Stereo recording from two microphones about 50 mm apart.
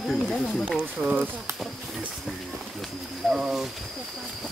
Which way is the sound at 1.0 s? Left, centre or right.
Right.